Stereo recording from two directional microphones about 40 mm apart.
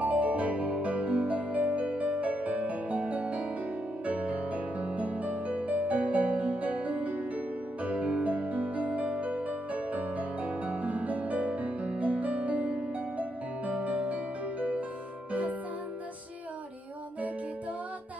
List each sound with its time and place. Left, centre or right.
0.0 s music: right